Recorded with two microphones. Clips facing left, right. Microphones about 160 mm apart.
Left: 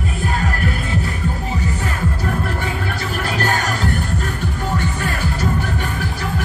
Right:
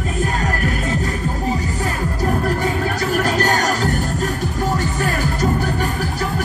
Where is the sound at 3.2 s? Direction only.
40° right (ahead or behind).